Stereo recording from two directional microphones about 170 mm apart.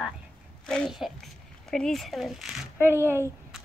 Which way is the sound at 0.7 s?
5° left (ahead or behind).